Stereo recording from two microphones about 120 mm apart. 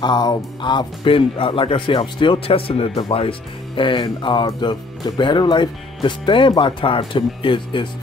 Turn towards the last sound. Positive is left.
turn(degrees=45)  # may be behind; listen again after turning